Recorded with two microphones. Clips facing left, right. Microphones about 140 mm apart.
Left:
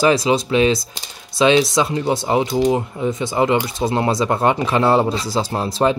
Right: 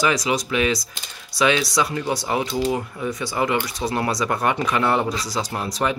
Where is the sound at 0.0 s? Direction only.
30° left (ahead or behind).